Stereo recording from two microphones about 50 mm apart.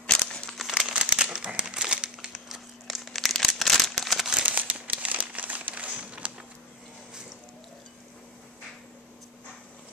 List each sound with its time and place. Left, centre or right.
0.0 s crumpling: centre
0.7 s crumpling: centre
2.5 s crumpling: centre
4.5 s crumpling: right